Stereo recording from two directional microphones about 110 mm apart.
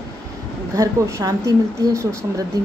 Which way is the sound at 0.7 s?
30° right (ahead or behind).